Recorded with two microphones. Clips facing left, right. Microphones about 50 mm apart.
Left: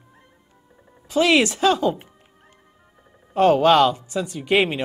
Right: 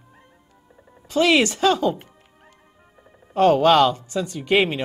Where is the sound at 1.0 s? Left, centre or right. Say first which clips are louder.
Even; centre.